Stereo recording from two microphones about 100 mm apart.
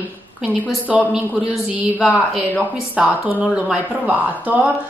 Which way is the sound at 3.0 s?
15° right (ahead or behind).